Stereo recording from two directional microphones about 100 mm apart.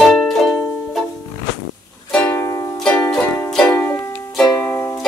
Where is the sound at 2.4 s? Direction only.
25° left (ahead or behind).